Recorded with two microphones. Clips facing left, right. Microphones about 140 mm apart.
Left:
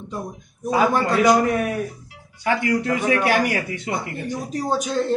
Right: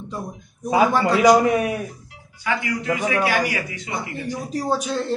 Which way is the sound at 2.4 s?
55° left (ahead or behind).